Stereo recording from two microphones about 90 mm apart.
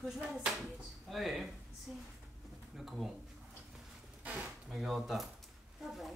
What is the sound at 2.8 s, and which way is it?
Speech, centre (ahead or behind).